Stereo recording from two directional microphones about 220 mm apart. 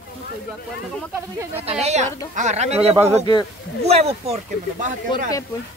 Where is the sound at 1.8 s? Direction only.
30° right (ahead or behind).